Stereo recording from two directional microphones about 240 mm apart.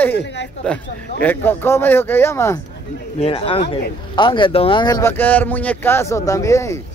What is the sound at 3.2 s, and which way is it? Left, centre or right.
A man's voice, left.